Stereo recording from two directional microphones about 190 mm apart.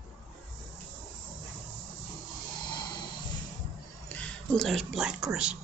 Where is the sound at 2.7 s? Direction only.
25° left (ahead or behind).